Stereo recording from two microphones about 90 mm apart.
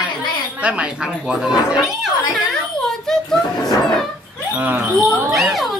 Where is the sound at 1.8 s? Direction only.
Centre (ahead or behind).